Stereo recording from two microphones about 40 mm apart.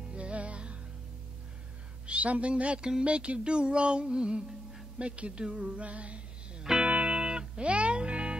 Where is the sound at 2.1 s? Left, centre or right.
Right.